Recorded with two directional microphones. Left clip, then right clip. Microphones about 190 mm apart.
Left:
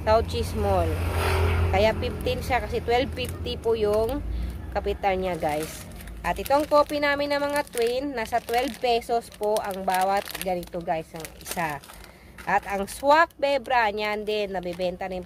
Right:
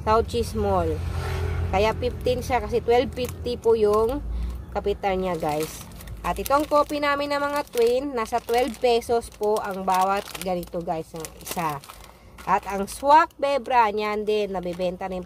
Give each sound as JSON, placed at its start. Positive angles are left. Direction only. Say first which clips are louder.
{"t": 0.0, "sound": "speech", "louder": "right 1 dB", "side_deg": -5}
{"t": 1.1, "sound": "speech", "louder": "left 7 dB", "side_deg": 40}
{"t": 1.7, "sound": "speech", "louder": "right 1 dB", "side_deg": 0}